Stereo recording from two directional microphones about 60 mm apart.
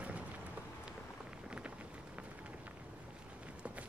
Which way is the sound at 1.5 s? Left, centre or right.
Centre.